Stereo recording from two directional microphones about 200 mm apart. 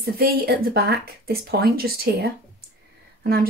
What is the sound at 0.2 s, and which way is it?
A woman's voice, 50° right (ahead or behind).